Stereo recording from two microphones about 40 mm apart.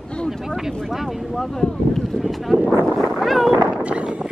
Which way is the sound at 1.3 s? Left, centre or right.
Centre.